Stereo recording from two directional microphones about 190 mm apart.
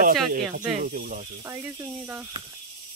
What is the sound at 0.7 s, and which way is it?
Speech, 45° right (ahead or behind).